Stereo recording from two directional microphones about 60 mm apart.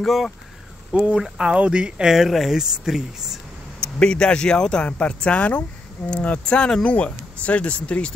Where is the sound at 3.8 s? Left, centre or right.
Centre.